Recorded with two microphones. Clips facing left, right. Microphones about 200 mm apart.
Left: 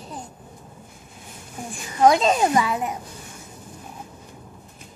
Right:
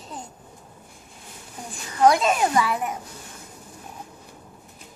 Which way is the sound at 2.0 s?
20° left (ahead or behind).